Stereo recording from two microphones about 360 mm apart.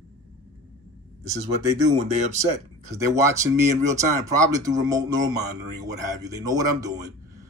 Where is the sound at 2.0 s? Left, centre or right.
Centre.